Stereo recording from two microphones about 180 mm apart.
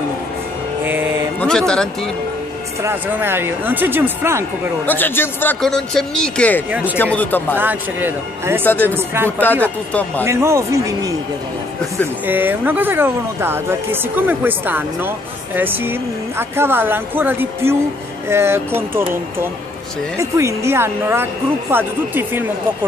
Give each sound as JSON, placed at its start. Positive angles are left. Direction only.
{"t": 1.4, "sound": "speech", "side_deg": 5}
{"t": 2.8, "sound": "speech", "side_deg": -10}
{"t": 4.8, "sound": "speech", "side_deg": 10}
{"t": 6.7, "sound": "speech", "side_deg": -10}
{"t": 7.0, "sound": "speech", "side_deg": 10}
{"t": 7.5, "sound": "speech", "side_deg": -10}
{"t": 8.6, "sound": "speech", "side_deg": 10}
{"t": 8.9, "sound": "speech", "side_deg": -15}
{"t": 9.4, "sound": "speech", "side_deg": 10}
{"t": 10.2, "sound": "speech", "side_deg": -15}
{"t": 12.3, "sound": "speech", "side_deg": -10}